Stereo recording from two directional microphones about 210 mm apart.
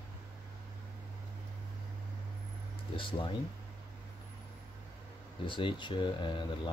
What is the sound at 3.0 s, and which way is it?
Speech, 25° left (ahead or behind).